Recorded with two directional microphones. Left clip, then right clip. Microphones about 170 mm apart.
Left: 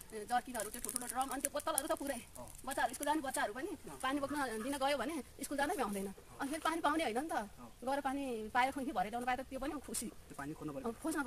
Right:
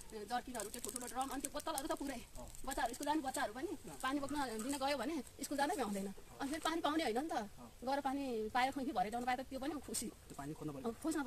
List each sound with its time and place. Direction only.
0.3 s speech: 15° left (ahead or behind); by 11.2 s centre (ahead or behind)